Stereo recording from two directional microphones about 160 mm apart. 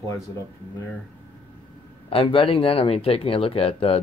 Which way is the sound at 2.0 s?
35° left (ahead or behind).